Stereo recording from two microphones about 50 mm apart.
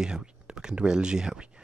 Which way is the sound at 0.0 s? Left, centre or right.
Centre.